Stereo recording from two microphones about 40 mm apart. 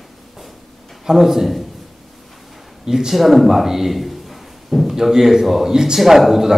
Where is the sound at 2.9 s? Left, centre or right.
Centre.